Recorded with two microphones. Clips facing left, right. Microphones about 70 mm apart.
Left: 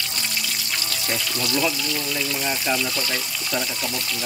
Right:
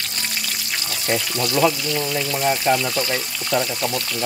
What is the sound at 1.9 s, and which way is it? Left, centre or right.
Speech, right.